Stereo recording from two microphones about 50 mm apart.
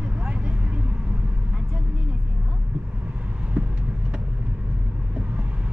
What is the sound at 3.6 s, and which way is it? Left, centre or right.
Vehicle, right.